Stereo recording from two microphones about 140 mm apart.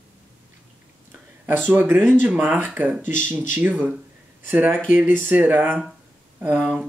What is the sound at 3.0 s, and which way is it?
Speech, 65° left (ahead or behind).